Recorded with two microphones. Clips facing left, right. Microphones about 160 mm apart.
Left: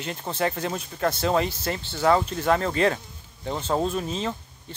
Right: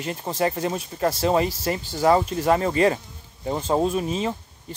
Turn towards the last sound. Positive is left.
turn(degrees=-10)  # may be behind; listen again after turning